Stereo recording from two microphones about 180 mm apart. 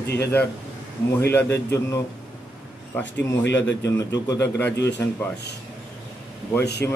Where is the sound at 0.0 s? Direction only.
65° left (ahead or behind).